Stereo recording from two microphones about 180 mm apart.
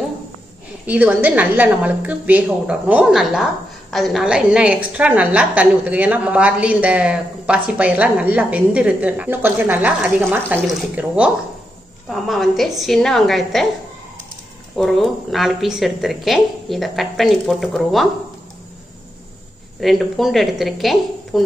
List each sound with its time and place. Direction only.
0.8 s a woman's voice: 10° right (ahead or behind)
14.8 s a woman's voice: centre (ahead or behind)
19.8 s a woman's voice: centre (ahead or behind)